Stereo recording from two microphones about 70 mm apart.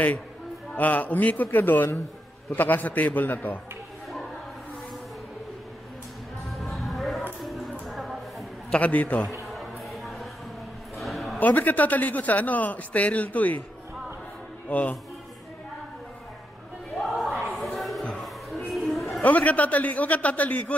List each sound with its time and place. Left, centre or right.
0.7 s a man's voice: left
6.5 s music: centre
7.9 s a sound: centre
8.6 s a man's voice: left
9.5 s music: centre
11.0 s a sound: centre
11.3 s a man's voice: left
14.7 s a man's voice: left
16.9 s a sound: centre
19.2 s a man's voice: left